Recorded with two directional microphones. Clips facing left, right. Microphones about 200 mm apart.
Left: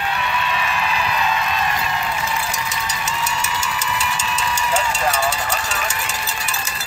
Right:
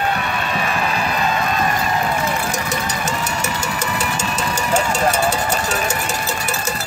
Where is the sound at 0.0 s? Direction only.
45° right (ahead or behind).